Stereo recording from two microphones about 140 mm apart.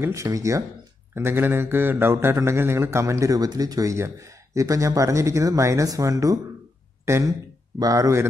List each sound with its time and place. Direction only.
0.0 s a man's voice: 20° right (ahead or behind)